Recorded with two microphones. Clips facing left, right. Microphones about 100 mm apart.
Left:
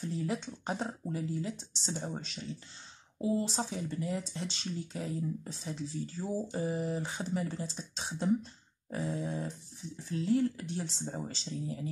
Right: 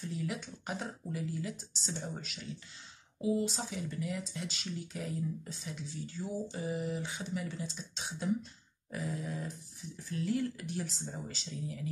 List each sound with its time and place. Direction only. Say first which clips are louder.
0.1 s speech: left 4 dB; 30° left (ahead or behind)